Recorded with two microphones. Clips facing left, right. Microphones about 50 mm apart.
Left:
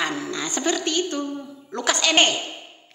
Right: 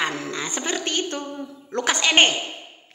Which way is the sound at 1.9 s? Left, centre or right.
Right.